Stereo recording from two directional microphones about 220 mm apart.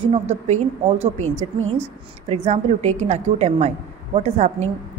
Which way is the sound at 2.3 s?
30° right (ahead or behind).